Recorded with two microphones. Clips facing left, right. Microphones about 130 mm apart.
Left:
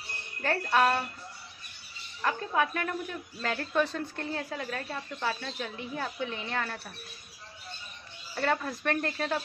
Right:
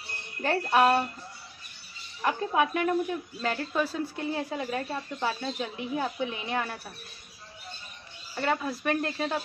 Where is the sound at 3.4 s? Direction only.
5° right (ahead or behind).